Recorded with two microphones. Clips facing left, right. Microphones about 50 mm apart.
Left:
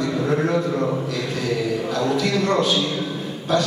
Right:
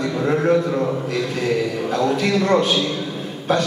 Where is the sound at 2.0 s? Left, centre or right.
Right.